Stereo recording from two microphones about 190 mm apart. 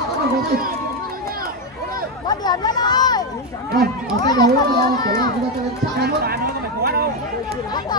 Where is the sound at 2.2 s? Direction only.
20° left (ahead or behind).